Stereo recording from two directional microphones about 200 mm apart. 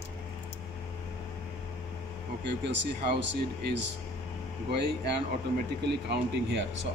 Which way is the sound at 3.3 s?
60° right (ahead or behind).